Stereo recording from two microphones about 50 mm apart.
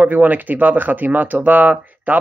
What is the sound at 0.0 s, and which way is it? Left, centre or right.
Speech, right.